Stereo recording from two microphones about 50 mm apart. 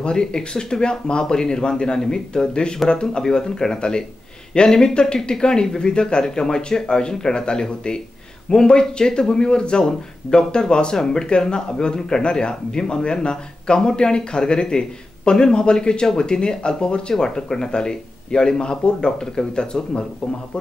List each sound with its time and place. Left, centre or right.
0.0 s speech: centre